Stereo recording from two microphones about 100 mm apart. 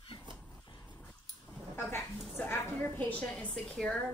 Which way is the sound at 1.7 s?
25° left (ahead or behind).